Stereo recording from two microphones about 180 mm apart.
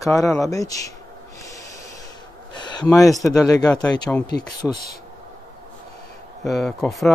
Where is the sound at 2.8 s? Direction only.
15° left (ahead or behind).